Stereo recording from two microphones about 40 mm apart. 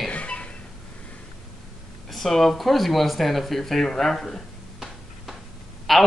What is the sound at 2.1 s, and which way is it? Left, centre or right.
Speech, centre.